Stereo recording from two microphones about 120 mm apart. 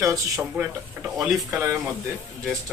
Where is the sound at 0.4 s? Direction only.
15° right (ahead or behind).